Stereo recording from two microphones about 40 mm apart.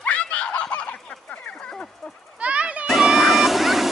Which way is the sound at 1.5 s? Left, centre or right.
Left.